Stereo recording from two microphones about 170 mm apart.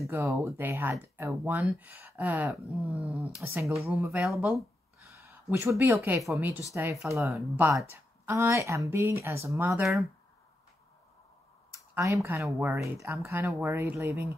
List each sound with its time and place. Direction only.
0.0 s speech: 15° right (ahead or behind)
11.7 s speech: 20° right (ahead or behind)